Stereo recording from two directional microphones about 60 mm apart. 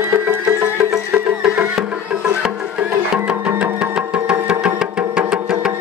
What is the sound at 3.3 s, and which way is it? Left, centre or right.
Music, centre.